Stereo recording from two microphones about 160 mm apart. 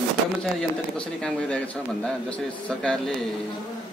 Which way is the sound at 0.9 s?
5° left (ahead or behind).